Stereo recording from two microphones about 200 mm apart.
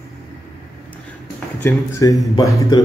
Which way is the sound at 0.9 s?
5° left (ahead or behind).